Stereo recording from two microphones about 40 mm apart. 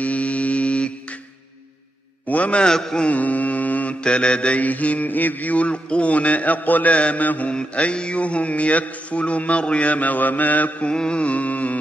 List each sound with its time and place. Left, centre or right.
0.0 s a sound: left
2.2 s a sound: left
2.6 s mantra: centre
3.1 s mantra: left
4.0 s mantra: left
4.6 s mantra: left
7.0 s mantra: left
7.5 s mantra: left
10.9 s mantra: left